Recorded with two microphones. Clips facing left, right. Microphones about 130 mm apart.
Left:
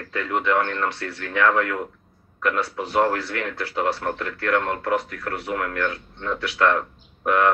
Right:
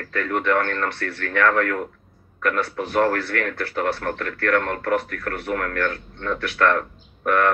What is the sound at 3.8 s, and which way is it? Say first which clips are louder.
Speech: even; 25° left (ahead or behind).